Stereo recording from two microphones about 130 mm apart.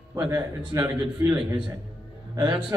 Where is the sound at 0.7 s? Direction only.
15° right (ahead or behind).